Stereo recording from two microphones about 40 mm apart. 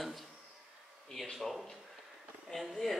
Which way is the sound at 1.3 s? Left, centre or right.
Centre.